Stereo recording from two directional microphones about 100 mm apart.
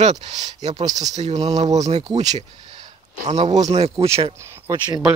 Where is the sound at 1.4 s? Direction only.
40° right (ahead or behind).